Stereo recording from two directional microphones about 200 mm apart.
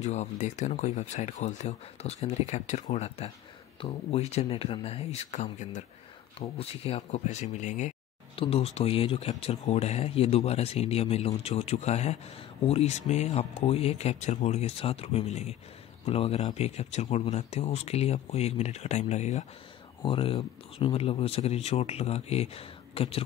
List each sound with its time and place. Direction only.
0.0 s speech: 35° left (ahead or behind)